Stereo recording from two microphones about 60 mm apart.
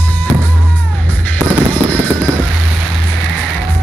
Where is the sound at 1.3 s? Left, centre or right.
Left.